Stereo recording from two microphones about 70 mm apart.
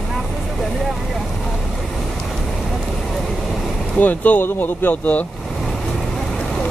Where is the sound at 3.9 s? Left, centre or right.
Left.